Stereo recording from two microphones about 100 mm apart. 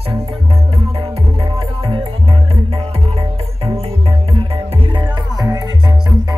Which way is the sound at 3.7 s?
80° right.